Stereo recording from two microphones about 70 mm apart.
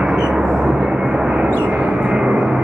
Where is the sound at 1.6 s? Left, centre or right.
Centre.